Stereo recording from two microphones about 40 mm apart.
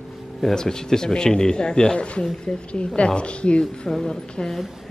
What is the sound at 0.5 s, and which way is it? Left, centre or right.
A woman's voice, centre.